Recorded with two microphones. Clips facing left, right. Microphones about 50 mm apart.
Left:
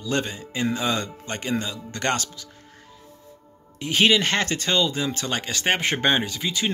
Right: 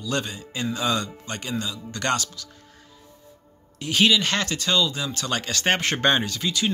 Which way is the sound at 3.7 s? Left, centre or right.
Left.